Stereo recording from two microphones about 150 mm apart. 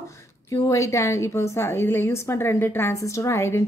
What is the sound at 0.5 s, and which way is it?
A woman's voice, 20° left (ahead or behind).